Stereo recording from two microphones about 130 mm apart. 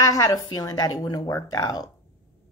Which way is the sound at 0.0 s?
25° left (ahead or behind).